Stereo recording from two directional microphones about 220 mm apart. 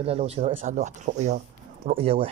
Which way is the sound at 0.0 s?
25° right (ahead or behind).